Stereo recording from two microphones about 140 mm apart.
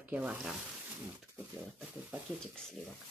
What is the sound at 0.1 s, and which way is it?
Speech, 10° right (ahead or behind).